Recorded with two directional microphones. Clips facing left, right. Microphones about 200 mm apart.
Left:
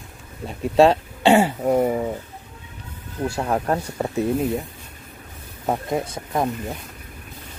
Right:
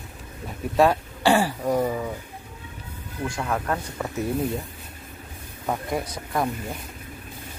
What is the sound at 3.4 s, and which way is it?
Speech, 35° left (ahead or behind).